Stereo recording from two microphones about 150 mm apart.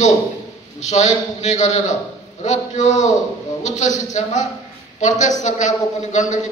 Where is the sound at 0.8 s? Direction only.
50° left (ahead or behind).